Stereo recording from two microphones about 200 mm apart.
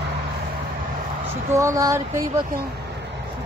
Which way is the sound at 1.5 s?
15° right (ahead or behind).